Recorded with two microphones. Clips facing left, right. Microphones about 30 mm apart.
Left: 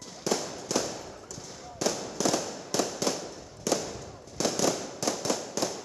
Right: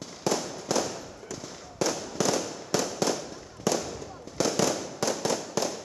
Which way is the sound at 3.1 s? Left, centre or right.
Centre.